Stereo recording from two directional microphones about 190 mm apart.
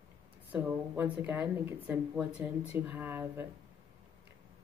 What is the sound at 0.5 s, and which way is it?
Speech, 10° right (ahead or behind).